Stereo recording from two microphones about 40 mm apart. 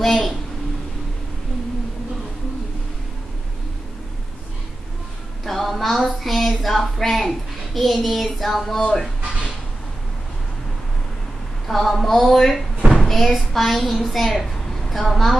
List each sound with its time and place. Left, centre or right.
0.0 s a woman's voice: centre
5.4 s a sound: centre
8.8 s speech: centre
11.6 s a woman's voice: centre